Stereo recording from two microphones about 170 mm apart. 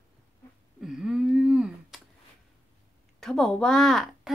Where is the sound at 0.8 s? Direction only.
Centre (ahead or behind).